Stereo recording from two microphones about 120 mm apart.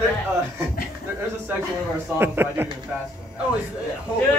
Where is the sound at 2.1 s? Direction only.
20° right (ahead or behind).